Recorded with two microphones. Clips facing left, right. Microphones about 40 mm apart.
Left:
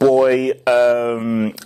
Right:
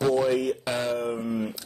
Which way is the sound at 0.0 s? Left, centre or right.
Left.